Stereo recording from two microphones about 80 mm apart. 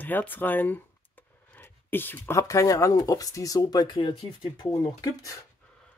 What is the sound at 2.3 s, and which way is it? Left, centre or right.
Speech, left.